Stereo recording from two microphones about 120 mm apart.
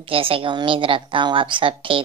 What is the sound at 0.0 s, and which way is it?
A woman's voice, 50° right (ahead or behind).